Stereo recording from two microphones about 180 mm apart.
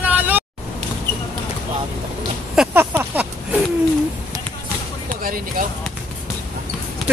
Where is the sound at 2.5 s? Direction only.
5° right (ahead or behind).